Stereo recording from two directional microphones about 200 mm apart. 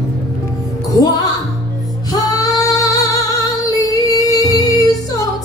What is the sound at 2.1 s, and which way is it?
Female singing, 15° left (ahead or behind).